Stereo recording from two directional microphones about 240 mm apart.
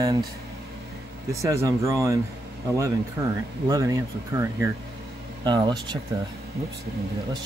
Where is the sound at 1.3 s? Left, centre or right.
Centre.